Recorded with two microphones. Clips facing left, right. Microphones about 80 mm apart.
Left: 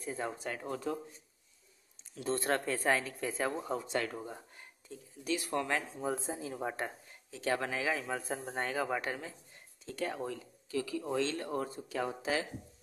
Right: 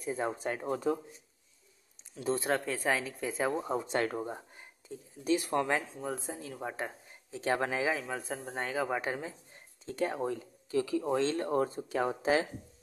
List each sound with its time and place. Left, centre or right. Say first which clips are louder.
0.2 s speech: right 4 dB; right
2.2 s speech: right 2 dB; centre; by 5.7 s right
5.9 s speech: left 2 dB; centre
7.1 s speech: right 3 dB; right
7.9 s speech: right 1 dB; centre
9.5 s speech: right 3 dB; right